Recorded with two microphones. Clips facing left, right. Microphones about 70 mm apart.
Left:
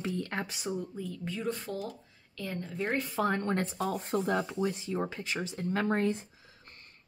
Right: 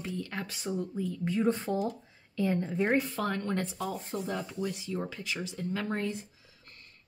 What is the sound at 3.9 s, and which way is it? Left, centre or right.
Speech, left.